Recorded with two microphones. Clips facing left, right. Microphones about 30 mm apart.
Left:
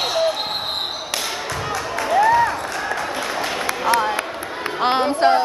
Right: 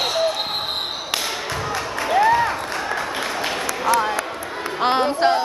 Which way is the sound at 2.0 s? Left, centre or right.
Centre.